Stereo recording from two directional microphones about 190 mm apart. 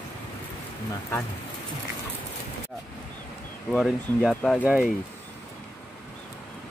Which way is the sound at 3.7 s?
Centre (ahead or behind).